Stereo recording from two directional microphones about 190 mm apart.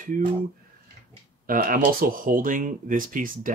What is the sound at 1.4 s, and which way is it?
Speech, 50° right (ahead or behind).